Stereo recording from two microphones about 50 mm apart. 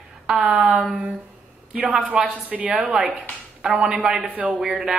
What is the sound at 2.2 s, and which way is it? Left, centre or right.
Speech, centre.